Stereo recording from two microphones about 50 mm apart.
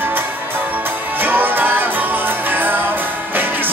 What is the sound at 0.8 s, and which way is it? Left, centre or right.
Music, right.